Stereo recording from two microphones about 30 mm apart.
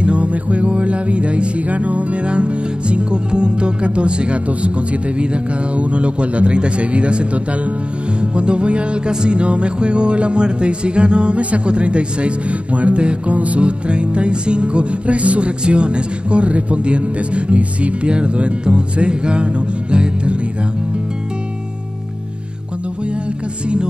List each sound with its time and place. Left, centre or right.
0.0 s music: right
1.7 s speech: right
12.7 s music: right
13.6 s speech: right
15.6 s speech: right